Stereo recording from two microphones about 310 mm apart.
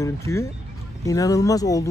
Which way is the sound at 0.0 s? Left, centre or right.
Centre.